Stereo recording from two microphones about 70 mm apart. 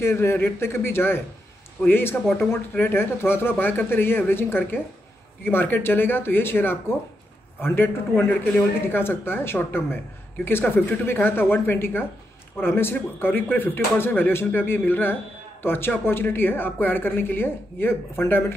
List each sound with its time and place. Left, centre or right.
0.0 s speech: left